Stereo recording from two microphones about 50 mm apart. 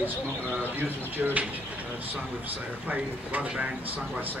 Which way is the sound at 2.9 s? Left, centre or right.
Right.